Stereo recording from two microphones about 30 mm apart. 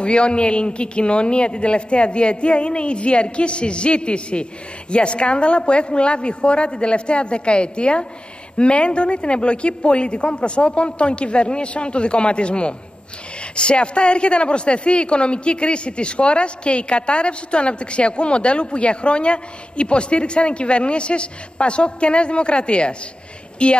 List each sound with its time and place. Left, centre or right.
0.0 s a woman's voice: left